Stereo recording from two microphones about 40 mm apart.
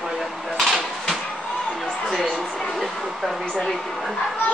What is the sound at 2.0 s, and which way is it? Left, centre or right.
Speech, centre.